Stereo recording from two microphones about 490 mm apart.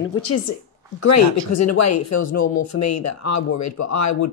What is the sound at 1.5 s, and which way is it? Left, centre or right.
Speech, left.